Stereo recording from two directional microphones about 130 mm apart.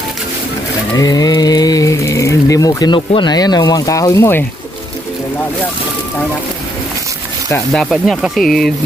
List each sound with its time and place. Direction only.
0.9 s a sound: 30° left (ahead or behind)
3.1 s speech: 35° left (ahead or behind); by 4.5 s 20° left (ahead or behind)
7.7 s speech: centre (ahead or behind)